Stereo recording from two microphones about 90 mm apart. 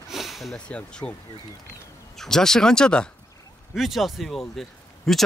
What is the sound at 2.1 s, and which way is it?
Speech, 5° left (ahead or behind).